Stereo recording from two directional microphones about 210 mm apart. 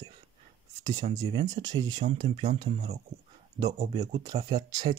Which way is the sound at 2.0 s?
40° right (ahead or behind).